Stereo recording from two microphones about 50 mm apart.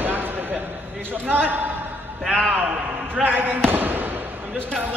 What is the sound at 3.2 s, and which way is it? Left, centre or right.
Speech, right.